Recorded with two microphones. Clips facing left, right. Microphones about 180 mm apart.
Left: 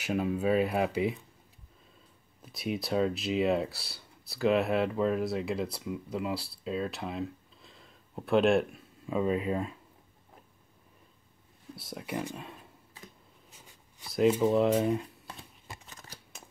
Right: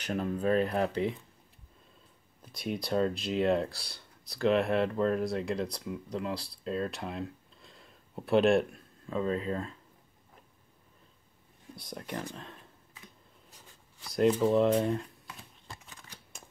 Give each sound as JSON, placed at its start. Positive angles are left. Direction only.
{"t": 0.0, "sound": "speech", "side_deg": 5}
{"t": 2.4, "sound": "speech", "side_deg": 5}
{"t": 11.7, "sound": "speech", "side_deg": 5}
{"t": 15.9, "sound": "shuffling cards", "side_deg": 40}